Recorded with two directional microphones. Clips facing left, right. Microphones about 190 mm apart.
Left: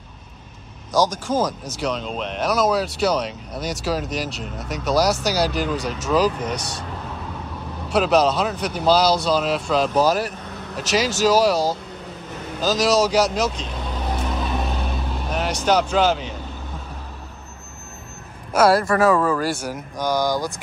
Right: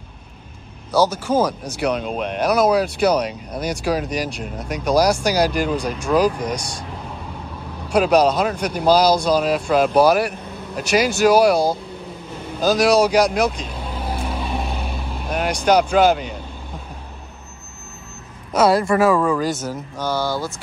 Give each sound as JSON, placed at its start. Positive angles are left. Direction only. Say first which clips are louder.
{"t": 0.9, "sound": "speech", "louder": "right 3 dB", "side_deg": -10}
{"t": 7.9, "sound": "speech", "louder": "right 2 dB", "side_deg": -10}
{"t": 12.7, "sound": "a man's voice", "louder": "right 3 dB", "side_deg": -60}
{"t": 13.1, "sound": "speech", "louder": "right 2 dB", "side_deg": -10}
{"t": 13.6, "sound": "vehicle", "louder": "even", "side_deg": -10}
{"t": 15.2, "sound": "speech", "louder": "right 3 dB", "side_deg": -10}
{"t": 18.5, "sound": "speech", "louder": "right 1 dB", "side_deg": 5}